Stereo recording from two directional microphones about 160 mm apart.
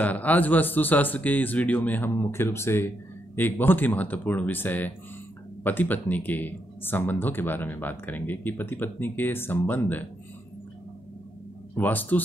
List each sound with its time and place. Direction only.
0.0 s speech: 10° left (ahead or behind)
11.7 s speech: 10° left (ahead or behind)